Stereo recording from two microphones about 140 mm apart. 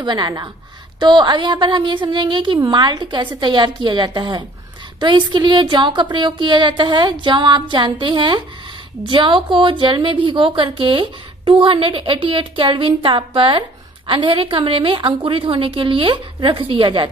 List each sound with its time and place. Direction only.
0.0 s a woman's voice: 30° right (ahead or behind)